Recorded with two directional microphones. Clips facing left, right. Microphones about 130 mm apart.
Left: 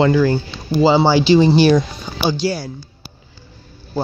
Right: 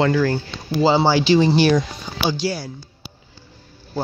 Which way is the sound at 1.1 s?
25° left (ahead or behind).